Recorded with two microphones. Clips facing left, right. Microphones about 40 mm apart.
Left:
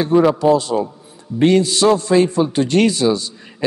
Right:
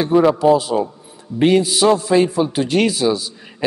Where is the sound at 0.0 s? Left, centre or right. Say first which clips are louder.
Even; centre.